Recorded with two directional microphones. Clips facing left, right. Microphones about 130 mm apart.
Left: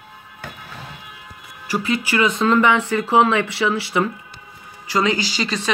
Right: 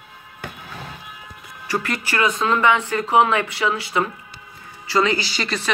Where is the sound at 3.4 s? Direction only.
30° left (ahead or behind).